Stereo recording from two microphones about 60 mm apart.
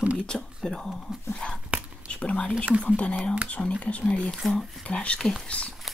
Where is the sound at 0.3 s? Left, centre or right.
Centre.